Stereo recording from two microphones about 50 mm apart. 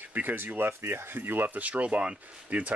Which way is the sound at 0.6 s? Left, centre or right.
Right.